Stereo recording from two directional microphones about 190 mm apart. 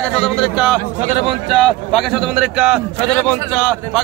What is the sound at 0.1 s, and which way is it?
Speech, centre (ahead or behind).